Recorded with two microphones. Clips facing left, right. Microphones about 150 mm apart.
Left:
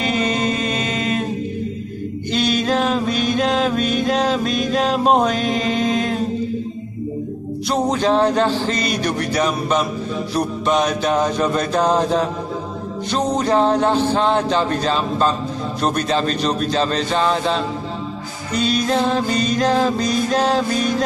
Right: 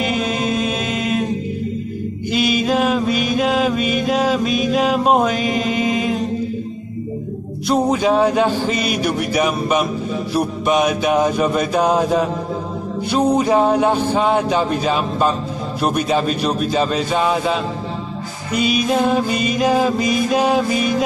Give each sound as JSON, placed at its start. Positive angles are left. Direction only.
{"t": 0.0, "sound": "mantra", "side_deg": 0}
{"t": 2.3, "sound": "mantra", "side_deg": -5}
{"t": 7.6, "sound": "music", "side_deg": -5}